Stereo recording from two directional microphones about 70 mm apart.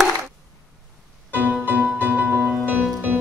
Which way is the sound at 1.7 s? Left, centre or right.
Right.